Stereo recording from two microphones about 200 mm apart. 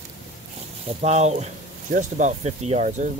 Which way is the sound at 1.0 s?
35° right (ahead or behind).